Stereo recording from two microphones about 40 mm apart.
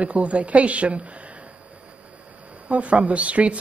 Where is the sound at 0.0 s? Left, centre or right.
Right.